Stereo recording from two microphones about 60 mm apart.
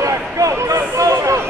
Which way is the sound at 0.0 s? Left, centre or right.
Right.